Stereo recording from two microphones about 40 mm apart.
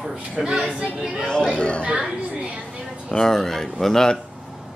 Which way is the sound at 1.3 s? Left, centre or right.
Left.